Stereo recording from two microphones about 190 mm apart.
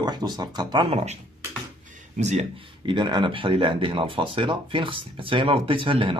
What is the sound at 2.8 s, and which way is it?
Speech, 25° right (ahead or behind).